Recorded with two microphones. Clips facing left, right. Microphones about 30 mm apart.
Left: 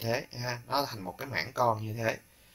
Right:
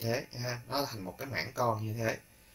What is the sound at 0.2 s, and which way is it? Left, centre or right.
Speech, centre.